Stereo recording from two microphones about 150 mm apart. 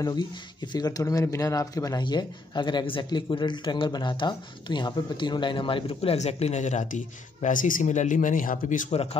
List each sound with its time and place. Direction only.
0.0 s a man's voice: 25° left (ahead or behind); by 9.0 s 60° left (ahead or behind)